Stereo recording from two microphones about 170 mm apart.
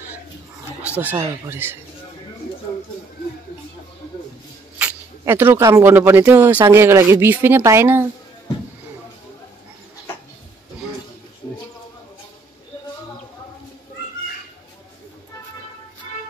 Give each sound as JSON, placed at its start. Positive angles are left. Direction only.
{"t": 0.8, "sound": "speech", "side_deg": -10}
{"t": 4.7, "sound": "speech", "side_deg": -10}